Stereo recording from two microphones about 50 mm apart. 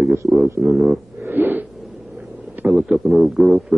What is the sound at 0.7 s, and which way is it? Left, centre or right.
Speech, centre.